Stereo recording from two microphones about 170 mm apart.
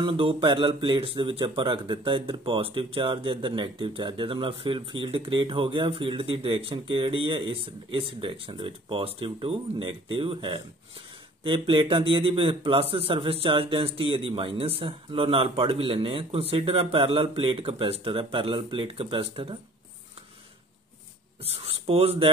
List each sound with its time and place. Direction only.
0.0 s speech: 30° right (ahead or behind)
21.5 s speech: 35° right (ahead or behind)